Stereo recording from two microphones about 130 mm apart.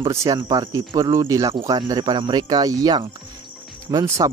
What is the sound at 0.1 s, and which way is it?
A man's voice, 25° right (ahead or behind).